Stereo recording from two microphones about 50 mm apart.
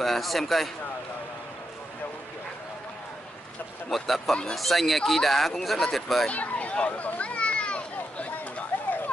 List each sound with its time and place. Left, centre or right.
0.0 s speech: centre
3.9 s speech: centre
6.2 s a sound: left